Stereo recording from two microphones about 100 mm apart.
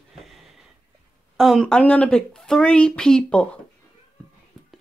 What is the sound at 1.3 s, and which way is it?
A woman's voice, centre (ahead or behind).